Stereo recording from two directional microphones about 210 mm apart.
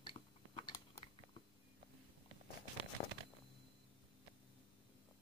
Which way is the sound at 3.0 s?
40° left (ahead or behind).